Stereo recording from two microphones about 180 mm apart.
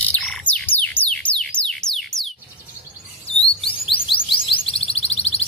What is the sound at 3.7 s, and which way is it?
Music, 30° left (ahead or behind).